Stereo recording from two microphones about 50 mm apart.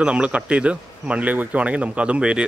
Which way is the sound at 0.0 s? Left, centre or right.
Right.